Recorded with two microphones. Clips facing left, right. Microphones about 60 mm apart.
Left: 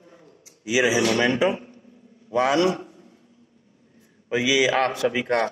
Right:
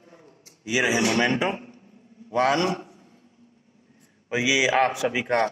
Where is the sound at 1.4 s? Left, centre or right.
Right.